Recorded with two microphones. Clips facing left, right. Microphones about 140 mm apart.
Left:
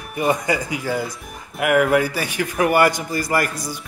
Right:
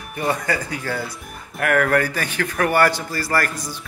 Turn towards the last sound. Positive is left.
turn(degrees=10)  # may be behind; listen again after turning